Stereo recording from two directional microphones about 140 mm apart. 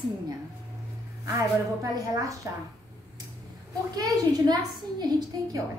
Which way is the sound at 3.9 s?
30° right (ahead or behind).